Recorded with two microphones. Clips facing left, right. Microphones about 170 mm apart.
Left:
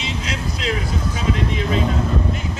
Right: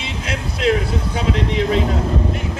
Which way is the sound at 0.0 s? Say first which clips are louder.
Even; 60° right (ahead or behind).